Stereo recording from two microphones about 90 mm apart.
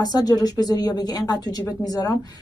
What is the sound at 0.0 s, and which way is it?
A woman's voice, 45° left (ahead or behind).